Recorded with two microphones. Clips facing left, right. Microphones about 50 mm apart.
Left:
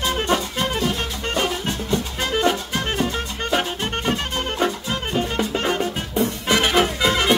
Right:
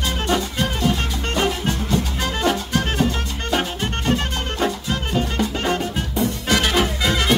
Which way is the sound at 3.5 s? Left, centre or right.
Centre.